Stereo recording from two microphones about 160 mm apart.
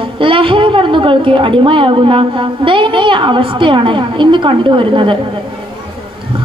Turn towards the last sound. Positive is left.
turn(degrees=-30)  # may be behind; listen again after turning